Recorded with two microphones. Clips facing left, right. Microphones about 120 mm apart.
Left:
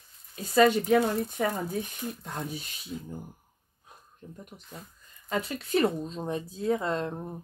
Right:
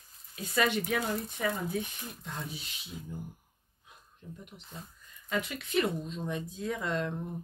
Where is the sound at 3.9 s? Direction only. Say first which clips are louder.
Left 1 dB; 45° left (ahead or behind).